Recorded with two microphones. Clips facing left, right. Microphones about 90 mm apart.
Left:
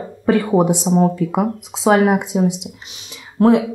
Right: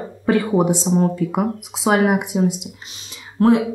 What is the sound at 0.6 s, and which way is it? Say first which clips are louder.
Speech: left 2 dB; 15° left (ahead or behind).